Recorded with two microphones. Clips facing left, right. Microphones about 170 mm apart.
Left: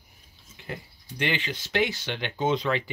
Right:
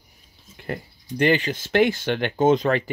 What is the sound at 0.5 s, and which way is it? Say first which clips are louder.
Speech: right 7 dB; 50° right (ahead or behind).